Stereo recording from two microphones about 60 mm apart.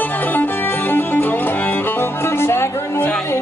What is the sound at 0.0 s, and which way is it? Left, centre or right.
Music, left.